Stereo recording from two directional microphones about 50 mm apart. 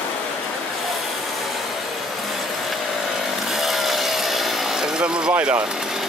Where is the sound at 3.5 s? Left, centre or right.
Centre.